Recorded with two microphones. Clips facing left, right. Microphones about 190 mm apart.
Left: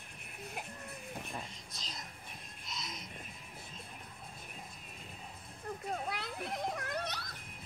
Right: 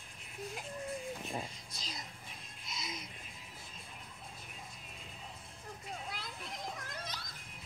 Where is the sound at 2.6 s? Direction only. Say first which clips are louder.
Right 1 dB; centre (ahead or behind).